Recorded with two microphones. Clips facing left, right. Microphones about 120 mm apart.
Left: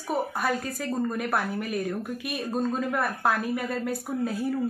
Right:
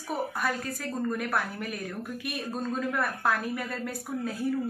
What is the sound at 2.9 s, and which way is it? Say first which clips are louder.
Speech: left 2 dB; 15° left (ahead or behind).